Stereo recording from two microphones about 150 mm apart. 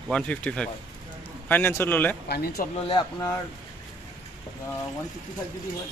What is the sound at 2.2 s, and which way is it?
Speech, 90° left.